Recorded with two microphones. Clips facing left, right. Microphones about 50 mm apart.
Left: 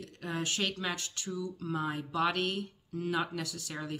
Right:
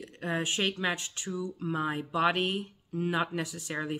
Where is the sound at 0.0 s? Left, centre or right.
Right.